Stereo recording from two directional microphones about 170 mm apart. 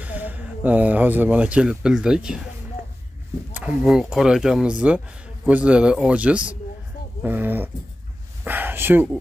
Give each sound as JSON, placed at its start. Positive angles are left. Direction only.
{"t": 0.0, "sound": "speech", "side_deg": -10}
{"t": 3.5, "sound": "a man's voice", "side_deg": -5}
{"t": 8.5, "sound": "a sound", "side_deg": -10}